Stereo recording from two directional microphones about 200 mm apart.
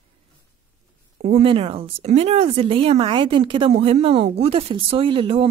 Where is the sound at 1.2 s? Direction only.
30° right (ahead or behind).